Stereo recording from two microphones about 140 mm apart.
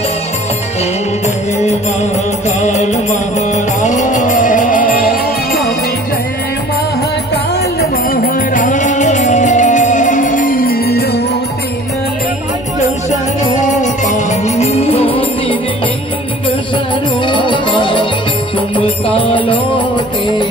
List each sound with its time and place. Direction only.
2.6 s music: 55° left (ahead or behind); by 5.7 s 90° left
8.1 s music: 80° left
13.7 s music: 60° left (ahead or behind); by 15.5 s 40° left (ahead or behind)
17.3 s music: 35° left (ahead or behind)